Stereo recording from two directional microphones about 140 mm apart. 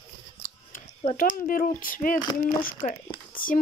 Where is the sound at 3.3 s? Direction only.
75° left (ahead or behind).